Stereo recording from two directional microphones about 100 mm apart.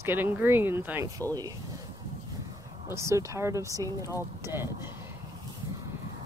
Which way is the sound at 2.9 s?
30° right (ahead or behind).